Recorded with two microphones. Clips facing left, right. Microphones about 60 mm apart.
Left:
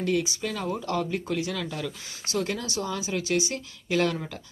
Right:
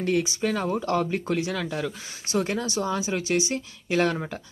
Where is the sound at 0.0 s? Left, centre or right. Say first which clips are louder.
Right 2 dB; right.